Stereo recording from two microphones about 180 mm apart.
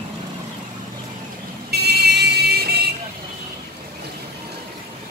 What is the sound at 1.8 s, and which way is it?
Vehicle, 65° right (ahead or behind).